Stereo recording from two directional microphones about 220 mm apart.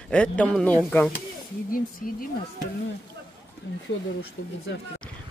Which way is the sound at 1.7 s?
40° left (ahead or behind).